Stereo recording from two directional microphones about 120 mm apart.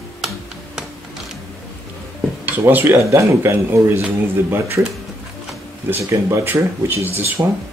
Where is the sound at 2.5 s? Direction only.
20° right (ahead or behind).